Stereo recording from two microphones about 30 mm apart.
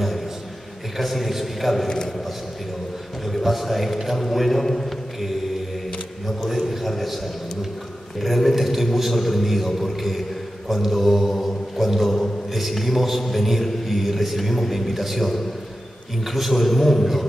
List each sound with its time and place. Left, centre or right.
0.9 s a man's voice: centre
1.9 s a man's voice: left
3.3 s a man's voice: centre
6.2 s a man's voice: centre
8.2 s a man's voice: centre
11.4 s mantra: centre
13.8 s a man's voice: centre